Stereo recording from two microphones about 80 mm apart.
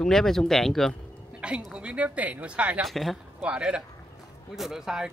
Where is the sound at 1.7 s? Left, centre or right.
Centre.